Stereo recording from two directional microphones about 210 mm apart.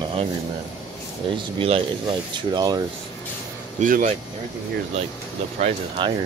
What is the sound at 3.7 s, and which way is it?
Speech, 40° right (ahead or behind).